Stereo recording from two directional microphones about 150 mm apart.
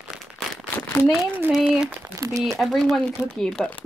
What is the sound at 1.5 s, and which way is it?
Speech, 5° right (ahead or behind).